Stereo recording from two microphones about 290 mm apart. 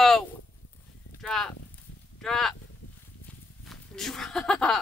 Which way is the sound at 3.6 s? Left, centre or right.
Centre.